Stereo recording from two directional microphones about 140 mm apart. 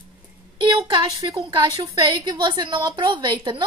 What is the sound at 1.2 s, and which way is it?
A woman's voice, 35° right (ahead or behind).